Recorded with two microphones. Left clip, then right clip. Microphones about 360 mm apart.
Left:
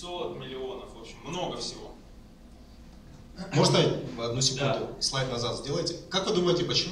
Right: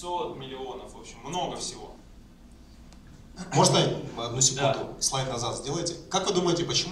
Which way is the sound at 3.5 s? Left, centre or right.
Centre.